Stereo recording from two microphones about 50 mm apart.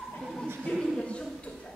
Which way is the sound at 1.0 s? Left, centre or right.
Left.